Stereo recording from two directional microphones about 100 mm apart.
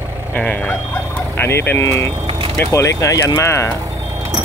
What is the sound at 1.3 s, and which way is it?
Speech, 25° left (ahead or behind).